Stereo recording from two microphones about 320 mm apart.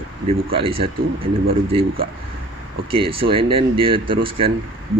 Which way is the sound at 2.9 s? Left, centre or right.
Centre.